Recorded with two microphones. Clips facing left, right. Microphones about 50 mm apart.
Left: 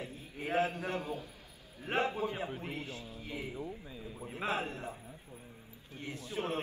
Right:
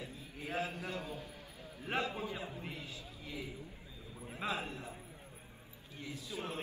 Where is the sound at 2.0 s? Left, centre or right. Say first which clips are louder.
Left 5 dB; left.